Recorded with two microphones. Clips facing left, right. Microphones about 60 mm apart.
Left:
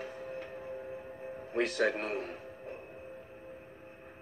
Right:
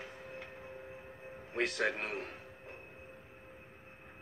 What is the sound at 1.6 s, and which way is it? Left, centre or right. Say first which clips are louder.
Speech: left 4 dB; left.